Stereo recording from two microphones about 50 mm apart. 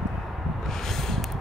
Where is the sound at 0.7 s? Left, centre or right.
Centre.